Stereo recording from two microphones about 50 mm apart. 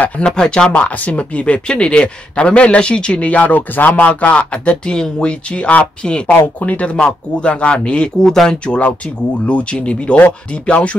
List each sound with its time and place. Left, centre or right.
0.2 s speech: centre
0.7 s a man's voice: left